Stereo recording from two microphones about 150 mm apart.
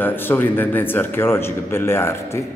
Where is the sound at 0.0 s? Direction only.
15° left (ahead or behind).